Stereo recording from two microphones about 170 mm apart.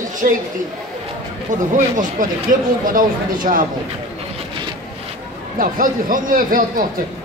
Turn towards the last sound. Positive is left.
turn(degrees=-55)  # may be behind; listen again after turning